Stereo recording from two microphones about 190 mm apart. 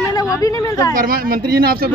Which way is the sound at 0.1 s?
20° left (ahead or behind).